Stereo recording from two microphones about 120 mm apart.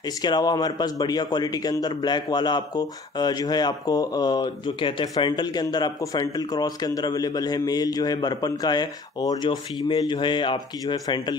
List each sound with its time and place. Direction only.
0.0 s speech: 35° left (ahead or behind)